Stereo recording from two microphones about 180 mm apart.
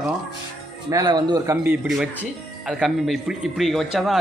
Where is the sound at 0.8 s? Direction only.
20° right (ahead or behind).